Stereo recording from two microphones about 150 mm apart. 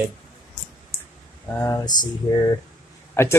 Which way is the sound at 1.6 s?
20° left (ahead or behind).